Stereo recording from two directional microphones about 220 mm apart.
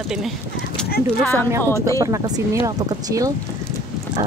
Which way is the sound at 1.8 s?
15° right (ahead or behind).